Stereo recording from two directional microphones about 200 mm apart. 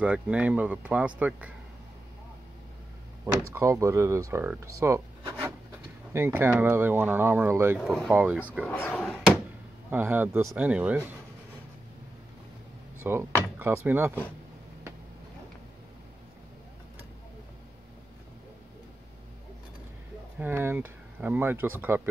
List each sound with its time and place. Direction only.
0.0 s speech: 5° right (ahead or behind)
3.5 s speech: 15° right (ahead or behind)
4.7 s rub: 15° right (ahead or behind)
6.1 s speech: 10° right (ahead or behind)
7.8 s speech: centre (ahead or behind)
8.1 s speech: 10° right (ahead or behind)
8.6 s speech: 10° left (ahead or behind)
9.8 s speech: 10° right (ahead or behind)
13.0 s door: 10° right (ahead or behind)
13.8 s speech: 10° right (ahead or behind)
20.3 s speech: 10° right (ahead or behind)